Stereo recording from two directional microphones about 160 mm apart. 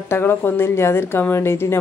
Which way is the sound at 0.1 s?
15° left (ahead or behind).